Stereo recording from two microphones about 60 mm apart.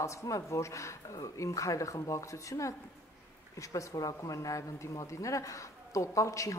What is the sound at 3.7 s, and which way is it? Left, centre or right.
A woman's voice, left.